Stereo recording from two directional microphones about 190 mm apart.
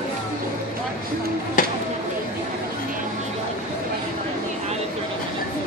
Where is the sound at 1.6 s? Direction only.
45° left (ahead or behind).